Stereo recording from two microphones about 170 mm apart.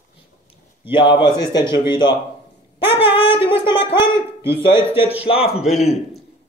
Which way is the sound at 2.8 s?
10° right (ahead or behind).